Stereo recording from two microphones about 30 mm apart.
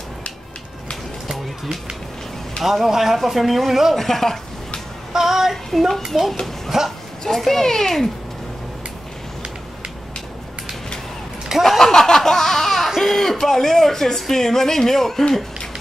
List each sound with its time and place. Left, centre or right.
2.6 s a man's voice: centre
3.9 s speech: centre
5.1 s child singing: centre
5.7 s speech: centre
6.0 s a man's voice: centre
7.2 s speech: centre
11.8 s laughter: centre
13.0 s a sound: centre
13.4 s speech: centre